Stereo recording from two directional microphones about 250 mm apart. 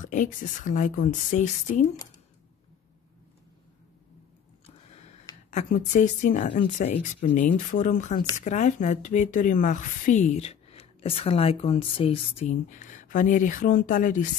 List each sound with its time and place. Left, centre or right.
0.0 s speech: left
5.5 s speech: left